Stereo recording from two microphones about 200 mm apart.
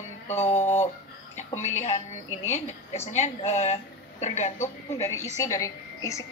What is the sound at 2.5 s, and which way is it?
A woman's voice, 35° left (ahead or behind).